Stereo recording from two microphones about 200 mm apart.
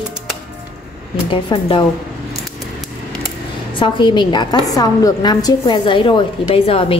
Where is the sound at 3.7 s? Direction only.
25° left (ahead or behind).